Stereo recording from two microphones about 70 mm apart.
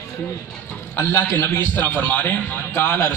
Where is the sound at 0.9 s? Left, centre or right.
Left.